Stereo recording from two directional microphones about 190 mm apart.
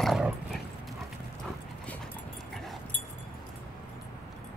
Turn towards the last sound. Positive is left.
turn(degrees=0)  # may be behind; listen again after turning